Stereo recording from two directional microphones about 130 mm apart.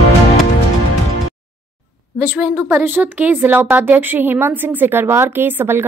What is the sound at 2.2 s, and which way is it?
A woman's voice, 15° right (ahead or behind).